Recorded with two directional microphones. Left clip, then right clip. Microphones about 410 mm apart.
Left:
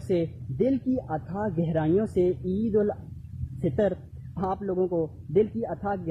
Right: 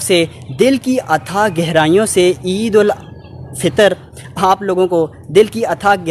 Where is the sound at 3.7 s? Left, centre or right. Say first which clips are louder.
Right 15 dB; centre.